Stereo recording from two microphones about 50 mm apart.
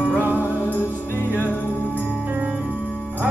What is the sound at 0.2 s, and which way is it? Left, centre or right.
Music, right.